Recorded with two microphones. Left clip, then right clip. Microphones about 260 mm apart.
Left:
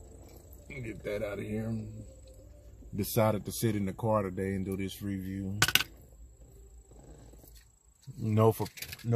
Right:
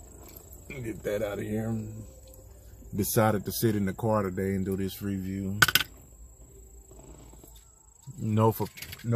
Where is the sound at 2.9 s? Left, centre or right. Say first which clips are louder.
Right 3 dB; centre.